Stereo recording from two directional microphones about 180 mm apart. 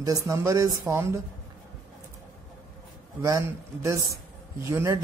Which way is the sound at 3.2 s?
15° right (ahead or behind).